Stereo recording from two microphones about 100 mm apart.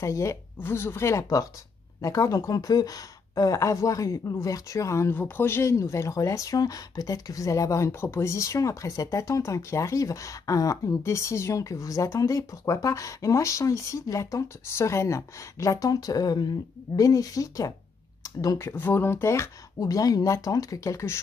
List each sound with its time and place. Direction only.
0.0 s speech: 30° left (ahead or behind)
18.7 s speech: 20° left (ahead or behind)